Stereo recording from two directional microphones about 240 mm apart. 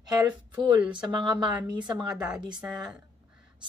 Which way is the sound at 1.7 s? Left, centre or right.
Centre.